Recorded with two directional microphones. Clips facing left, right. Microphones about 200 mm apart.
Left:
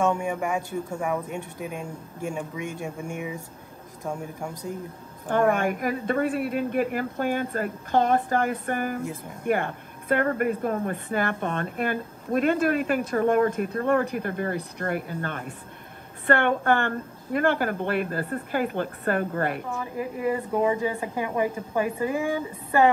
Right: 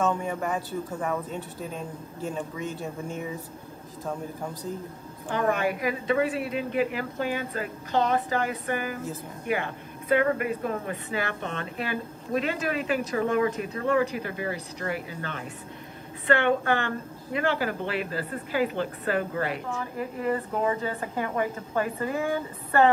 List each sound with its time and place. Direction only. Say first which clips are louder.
0.0 s speech: left 2 dB; 15° left (ahead or behind)
5.3 s a woman's voice: left 3 dB; 50° left (ahead or behind)
20.0 s speech: left 2 dB; 15° left (ahead or behind)